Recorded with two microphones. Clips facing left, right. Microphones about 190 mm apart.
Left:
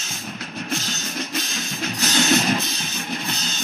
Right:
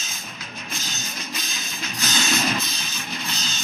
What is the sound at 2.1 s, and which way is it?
Music, 65° left (ahead or behind).